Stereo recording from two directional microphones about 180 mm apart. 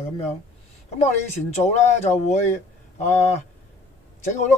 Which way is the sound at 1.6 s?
40° left (ahead or behind).